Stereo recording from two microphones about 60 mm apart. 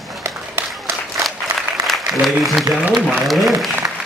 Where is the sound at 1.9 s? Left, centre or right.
Centre.